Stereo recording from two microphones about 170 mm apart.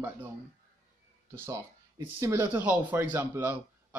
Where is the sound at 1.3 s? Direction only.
15° right (ahead or behind).